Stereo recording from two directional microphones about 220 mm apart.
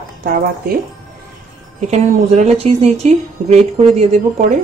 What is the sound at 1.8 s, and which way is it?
A woman's voice, 30° right (ahead or behind).